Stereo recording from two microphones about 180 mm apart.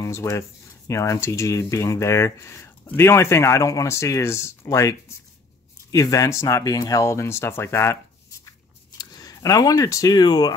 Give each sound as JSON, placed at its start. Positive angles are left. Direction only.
{"t": 0.0, "sound": "speech", "side_deg": 15}